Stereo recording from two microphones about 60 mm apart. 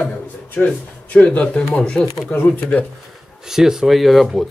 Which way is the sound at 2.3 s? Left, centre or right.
Left.